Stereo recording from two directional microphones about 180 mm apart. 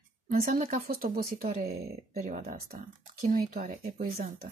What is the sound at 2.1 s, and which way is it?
Speech, 40° right (ahead or behind).